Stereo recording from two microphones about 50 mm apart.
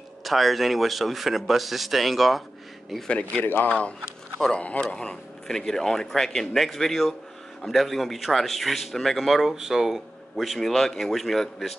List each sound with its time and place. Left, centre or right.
0.2 s a man's voice: centre
3.1 s a man's voice: left; by 11.7 s centre